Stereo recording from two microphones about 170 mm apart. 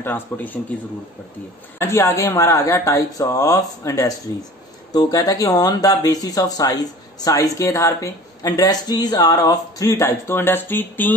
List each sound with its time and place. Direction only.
0.0 s a man's voice: 10° left (ahead or behind)
1.8 s speech: 15° left (ahead or behind)